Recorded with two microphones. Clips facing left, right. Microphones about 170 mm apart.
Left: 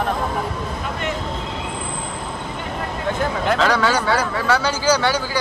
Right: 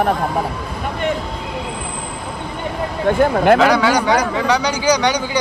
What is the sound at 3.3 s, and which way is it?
Speech, 60° right (ahead or behind).